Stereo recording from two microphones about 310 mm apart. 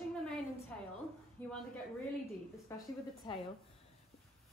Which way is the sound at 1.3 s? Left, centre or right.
Centre.